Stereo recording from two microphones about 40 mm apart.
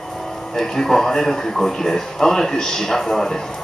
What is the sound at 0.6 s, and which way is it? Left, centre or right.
A man's voice, centre.